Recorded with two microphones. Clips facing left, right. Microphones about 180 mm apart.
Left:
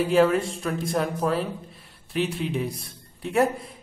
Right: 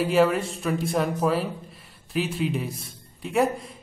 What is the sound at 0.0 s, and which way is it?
Speech, centre (ahead or behind).